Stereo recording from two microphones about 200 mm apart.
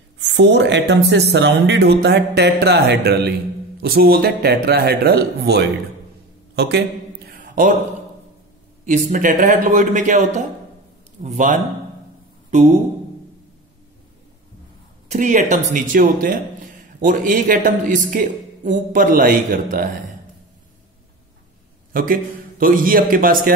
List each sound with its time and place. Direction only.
0.2 s a man's voice: 60° right (ahead or behind)
7.2 s a sound: 45° right (ahead or behind)
8.8 s a man's voice: 40° right (ahead or behind)
12.4 s a sound: 35° right (ahead or behind)
15.0 s a man's voice: 35° right (ahead or behind)
21.9 s speech: 45° right (ahead or behind)